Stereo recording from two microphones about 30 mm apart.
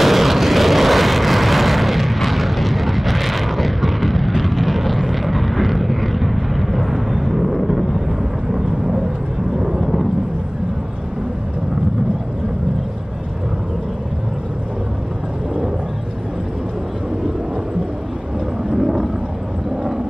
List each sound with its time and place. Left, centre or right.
0.0 s vehicle: centre
9.6 s vehicle: centre
18.8 s a sound: centre